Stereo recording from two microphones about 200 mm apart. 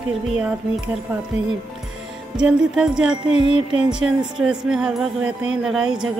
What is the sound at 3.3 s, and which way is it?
Music, 30° left (ahead or behind).